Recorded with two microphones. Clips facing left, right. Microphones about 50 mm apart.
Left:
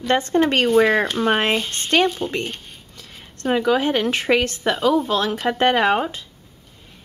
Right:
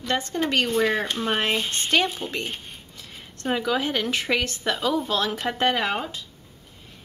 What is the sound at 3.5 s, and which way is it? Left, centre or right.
Speech, centre.